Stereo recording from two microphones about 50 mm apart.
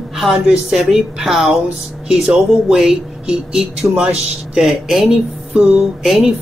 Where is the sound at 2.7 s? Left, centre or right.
Centre.